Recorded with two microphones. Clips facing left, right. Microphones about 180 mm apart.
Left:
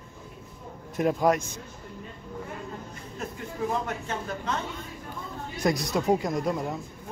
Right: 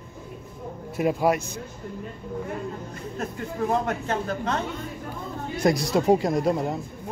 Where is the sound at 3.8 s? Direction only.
65° right (ahead or behind).